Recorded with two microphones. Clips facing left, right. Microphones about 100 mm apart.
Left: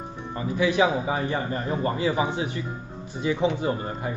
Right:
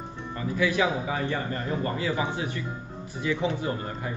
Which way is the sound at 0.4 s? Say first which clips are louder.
Left 3 dB; 20° left (ahead or behind).